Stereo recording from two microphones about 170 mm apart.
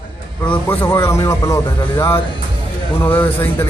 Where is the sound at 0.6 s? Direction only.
15° left (ahead or behind).